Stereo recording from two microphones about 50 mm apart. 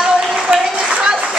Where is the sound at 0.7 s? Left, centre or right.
Centre.